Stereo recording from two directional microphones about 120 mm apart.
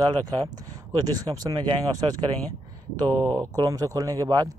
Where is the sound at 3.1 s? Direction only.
15° left (ahead or behind).